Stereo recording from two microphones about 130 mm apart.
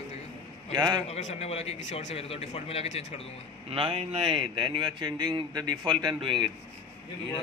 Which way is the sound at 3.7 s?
50° right (ahead or behind).